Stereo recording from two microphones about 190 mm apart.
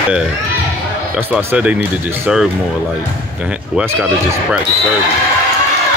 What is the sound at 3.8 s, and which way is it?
Speech, 5° right (ahead or behind).